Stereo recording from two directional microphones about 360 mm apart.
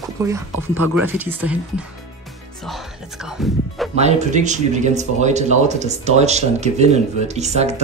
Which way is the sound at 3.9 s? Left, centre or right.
Centre.